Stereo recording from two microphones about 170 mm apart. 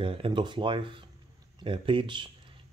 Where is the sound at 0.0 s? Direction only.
30° right (ahead or behind).